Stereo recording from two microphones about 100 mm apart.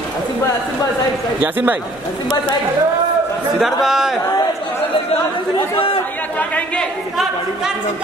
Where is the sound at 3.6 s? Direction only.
5° right (ahead or behind).